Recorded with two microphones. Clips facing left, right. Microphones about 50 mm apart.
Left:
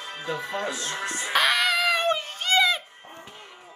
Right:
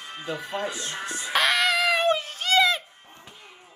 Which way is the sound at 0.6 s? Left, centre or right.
Left.